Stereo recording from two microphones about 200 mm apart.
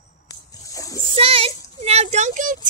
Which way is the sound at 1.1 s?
30° right (ahead or behind).